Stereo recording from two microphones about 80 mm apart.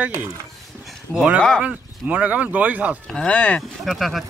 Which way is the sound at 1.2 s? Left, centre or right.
Centre.